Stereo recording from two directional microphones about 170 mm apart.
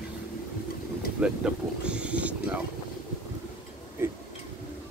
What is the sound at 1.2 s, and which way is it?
Speech, 5° right (ahead or behind).